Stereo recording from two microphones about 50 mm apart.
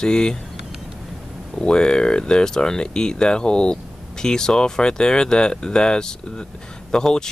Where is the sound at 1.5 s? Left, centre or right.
Centre.